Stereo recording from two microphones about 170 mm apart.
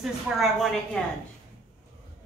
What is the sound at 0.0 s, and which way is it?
A woman's voice, centre (ahead or behind).